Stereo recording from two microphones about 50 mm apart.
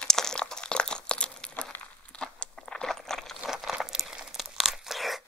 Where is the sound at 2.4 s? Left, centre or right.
Centre.